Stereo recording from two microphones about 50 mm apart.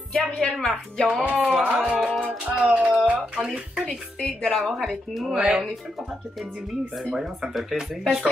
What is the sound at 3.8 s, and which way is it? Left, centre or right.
Speech, centre.